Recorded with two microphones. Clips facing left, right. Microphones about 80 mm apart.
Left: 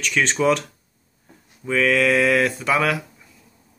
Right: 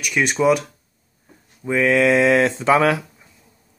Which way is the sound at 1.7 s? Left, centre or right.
Right.